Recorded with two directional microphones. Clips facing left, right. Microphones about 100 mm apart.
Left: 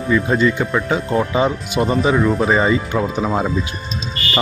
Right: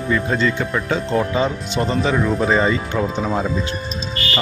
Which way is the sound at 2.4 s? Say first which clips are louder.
Left 1 dB; 15° left (ahead or behind).